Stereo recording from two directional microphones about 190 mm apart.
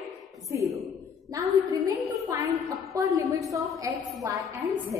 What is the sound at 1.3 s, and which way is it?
A woman's voice, 15° right (ahead or behind).